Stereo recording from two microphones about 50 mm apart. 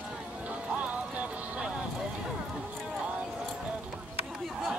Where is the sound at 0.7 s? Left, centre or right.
Right.